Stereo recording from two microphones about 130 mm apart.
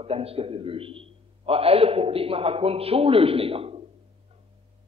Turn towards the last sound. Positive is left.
turn(degrees=-45)  # may be behind; listen again after turning